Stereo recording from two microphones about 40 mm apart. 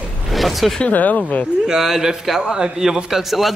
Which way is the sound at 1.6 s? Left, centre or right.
Centre.